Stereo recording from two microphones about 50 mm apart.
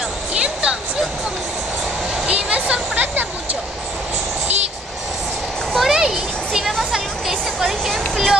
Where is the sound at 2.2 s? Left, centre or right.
Right.